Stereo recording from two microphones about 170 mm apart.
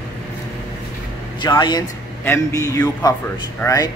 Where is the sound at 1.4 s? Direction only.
25° left (ahead or behind).